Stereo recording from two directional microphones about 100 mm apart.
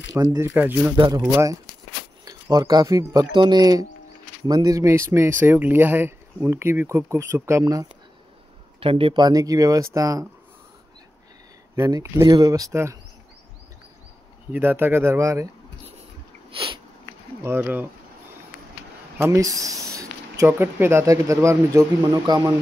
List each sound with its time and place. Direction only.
0.1 s speech: 35° right (ahead or behind)
0.6 s speech: 20° right (ahead or behind)
0.9 s speech: 45° right (ahead or behind)
2.5 s speech: 40° right (ahead or behind)
8.7 s speech: 65° right (ahead or behind)
9.2 s speech: 40° right (ahead or behind)
11.7 s speech: 30° right (ahead or behind)
14.5 s speech: 20° right (ahead or behind)
16.4 s a sound: 60° right (ahead or behind)
17.4 s speech: 20° right (ahead or behind)
19.1 s a sound: 30° right (ahead or behind)
20.4 s speech: 20° right (ahead or behind)